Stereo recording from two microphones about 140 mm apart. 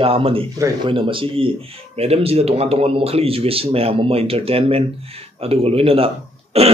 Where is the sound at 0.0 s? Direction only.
40° right (ahead or behind).